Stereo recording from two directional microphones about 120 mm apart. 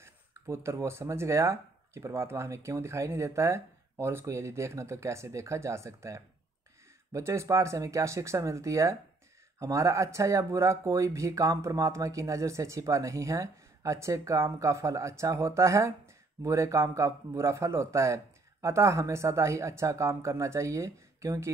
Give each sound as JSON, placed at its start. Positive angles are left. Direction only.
{"t": 0.7, "sound": "speech", "side_deg": -20}